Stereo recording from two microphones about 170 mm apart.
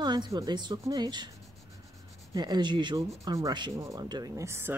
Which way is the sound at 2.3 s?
25° right (ahead or behind).